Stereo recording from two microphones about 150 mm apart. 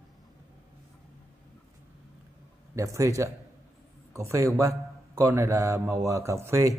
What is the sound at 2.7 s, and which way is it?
A man's voice, 20° right (ahead or behind).